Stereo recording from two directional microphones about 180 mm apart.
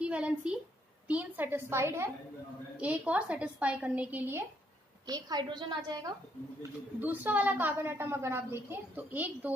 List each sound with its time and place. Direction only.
0.0 s a woman's voice: 5° right (ahead or behind)
5.0 s a woman's voice: 25° right (ahead or behind)
6.6 s a woman's voice: 10° right (ahead or behind)